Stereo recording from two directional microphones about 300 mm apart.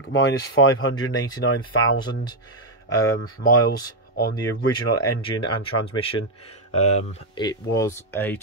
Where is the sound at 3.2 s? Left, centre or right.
Left.